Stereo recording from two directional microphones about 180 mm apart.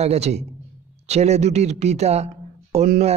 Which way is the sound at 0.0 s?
35° right (ahead or behind).